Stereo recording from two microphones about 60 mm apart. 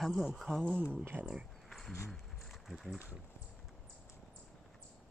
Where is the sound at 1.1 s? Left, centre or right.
Right.